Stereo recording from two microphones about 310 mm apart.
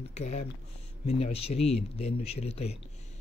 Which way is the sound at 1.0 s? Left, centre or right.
Centre.